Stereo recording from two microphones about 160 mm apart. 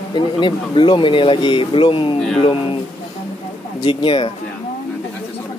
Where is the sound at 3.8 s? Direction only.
30° left (ahead or behind).